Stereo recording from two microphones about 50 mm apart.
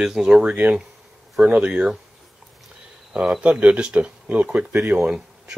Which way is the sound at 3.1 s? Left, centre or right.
Centre.